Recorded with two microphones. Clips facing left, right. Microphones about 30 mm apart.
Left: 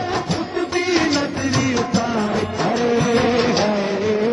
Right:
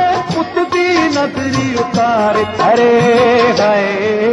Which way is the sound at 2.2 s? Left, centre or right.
Right.